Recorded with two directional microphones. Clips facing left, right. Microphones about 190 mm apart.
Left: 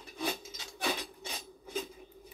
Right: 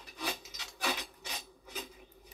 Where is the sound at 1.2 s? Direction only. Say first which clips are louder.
Left 3 dB; 30° left (ahead or behind).